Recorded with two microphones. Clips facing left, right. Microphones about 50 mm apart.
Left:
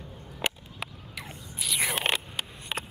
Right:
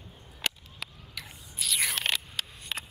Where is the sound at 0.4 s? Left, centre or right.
Left.